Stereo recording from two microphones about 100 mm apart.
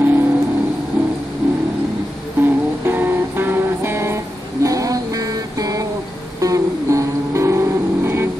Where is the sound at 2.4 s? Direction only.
20° right (ahead or behind).